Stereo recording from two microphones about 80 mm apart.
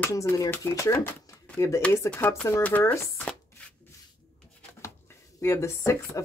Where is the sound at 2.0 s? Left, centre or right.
Left.